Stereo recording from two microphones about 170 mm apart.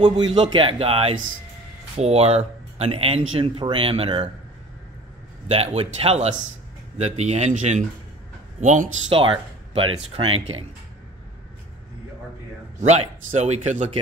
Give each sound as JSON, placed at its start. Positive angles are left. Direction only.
{"t": 0.0, "sound": "speech", "side_deg": -25}
{"t": 5.5, "sound": "speech", "side_deg": -35}
{"t": 9.1, "sound": "speech", "side_deg": -30}
{"t": 12.8, "sound": "speech", "side_deg": -40}